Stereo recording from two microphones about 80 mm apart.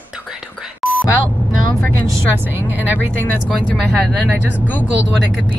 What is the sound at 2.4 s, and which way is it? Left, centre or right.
Speech, right.